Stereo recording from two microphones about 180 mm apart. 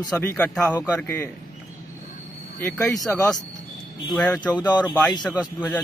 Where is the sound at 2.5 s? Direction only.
10° left (ahead or behind).